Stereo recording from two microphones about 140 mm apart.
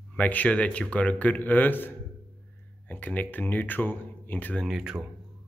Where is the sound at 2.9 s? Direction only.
10° left (ahead or behind).